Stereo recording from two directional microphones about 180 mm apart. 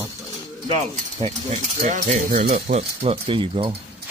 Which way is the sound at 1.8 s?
45° right (ahead or behind).